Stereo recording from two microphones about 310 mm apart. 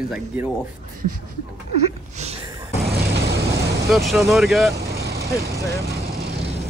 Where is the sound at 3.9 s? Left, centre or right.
Centre.